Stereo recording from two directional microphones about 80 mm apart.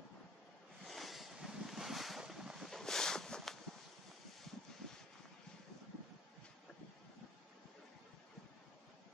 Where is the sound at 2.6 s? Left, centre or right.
Centre.